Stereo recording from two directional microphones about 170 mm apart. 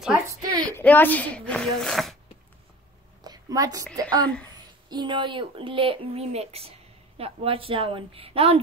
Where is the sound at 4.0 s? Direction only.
25° right (ahead or behind).